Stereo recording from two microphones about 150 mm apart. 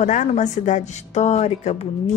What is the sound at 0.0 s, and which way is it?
Speech, 50° left (ahead or behind).